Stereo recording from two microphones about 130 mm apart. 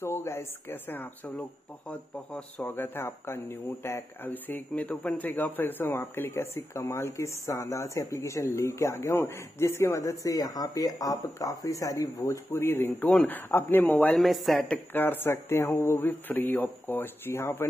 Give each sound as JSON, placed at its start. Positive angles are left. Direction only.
{"t": 0.0, "sound": "speech", "side_deg": 20}
{"t": 14.1, "sound": "speech", "side_deg": 0}